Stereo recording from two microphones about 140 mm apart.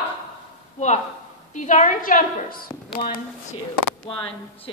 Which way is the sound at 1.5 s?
60° left (ahead or behind).